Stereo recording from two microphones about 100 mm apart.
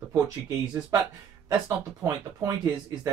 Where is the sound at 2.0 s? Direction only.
30° right (ahead or behind).